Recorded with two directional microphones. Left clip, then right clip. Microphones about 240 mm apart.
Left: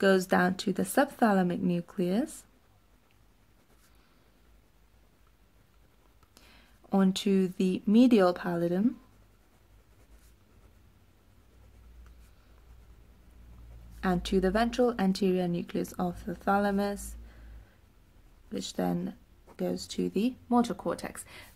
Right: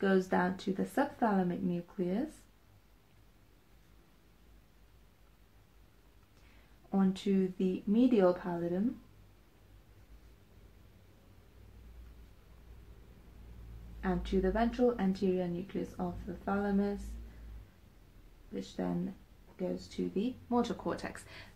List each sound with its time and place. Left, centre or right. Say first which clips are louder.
0.0 s speech: left 6 dB; left
6.9 s speech: left 6 dB; left
14.0 s speech: left 5 dB; left
18.5 s speech: left 6 dB; left
20.4 s speech: left 5 dB; left